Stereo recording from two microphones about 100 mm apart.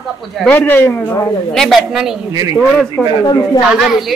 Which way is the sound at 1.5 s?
Centre (ahead or behind).